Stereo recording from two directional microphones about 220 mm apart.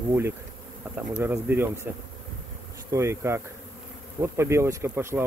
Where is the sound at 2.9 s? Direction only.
10° right (ahead or behind).